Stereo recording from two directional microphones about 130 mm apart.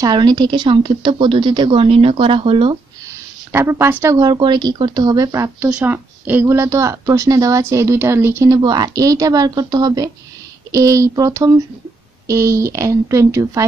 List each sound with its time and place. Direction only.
0.0 s a woman's voice: 30° right (ahead or behind)
3.5 s a woman's voice: 20° right (ahead or behind)
4.2 s a woman's voice: 35° right (ahead or behind)
5.7 s a woman's voice: 10° right (ahead or behind)